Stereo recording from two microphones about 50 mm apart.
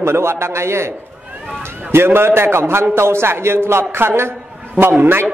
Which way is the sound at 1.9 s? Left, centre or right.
Right.